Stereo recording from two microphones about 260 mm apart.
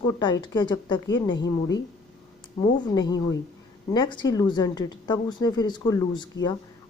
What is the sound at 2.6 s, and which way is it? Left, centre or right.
A woman's voice, centre.